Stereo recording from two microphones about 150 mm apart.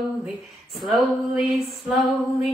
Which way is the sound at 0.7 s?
5° right (ahead or behind).